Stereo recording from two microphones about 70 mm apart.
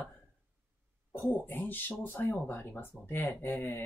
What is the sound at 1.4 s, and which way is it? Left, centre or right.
Speech, left.